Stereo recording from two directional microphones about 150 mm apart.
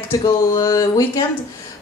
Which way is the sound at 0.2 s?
25° left (ahead or behind).